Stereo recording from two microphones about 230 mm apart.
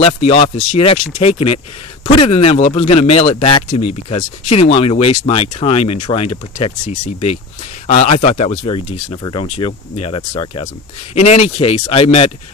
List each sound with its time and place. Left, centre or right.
0.0 s speech: left